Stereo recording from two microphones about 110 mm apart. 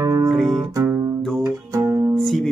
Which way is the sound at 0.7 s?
25° right (ahead or behind).